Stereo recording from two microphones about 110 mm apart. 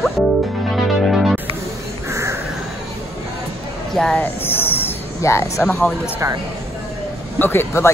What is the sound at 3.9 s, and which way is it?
Speech, 5° left (ahead or behind).